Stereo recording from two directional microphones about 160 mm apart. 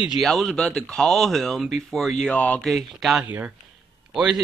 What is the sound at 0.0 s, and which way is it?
Speech, centre (ahead or behind).